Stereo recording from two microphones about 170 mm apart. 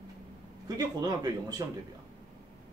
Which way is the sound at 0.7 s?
20° right (ahead or behind).